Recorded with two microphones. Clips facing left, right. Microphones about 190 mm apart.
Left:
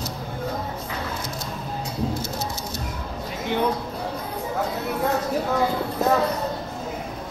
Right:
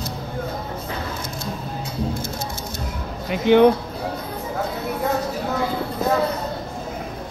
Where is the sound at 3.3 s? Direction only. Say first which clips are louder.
Right 11 dB; 75° right (ahead or behind).